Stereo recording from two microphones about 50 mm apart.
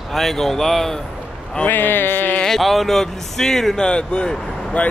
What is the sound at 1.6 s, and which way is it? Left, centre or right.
Speech, left.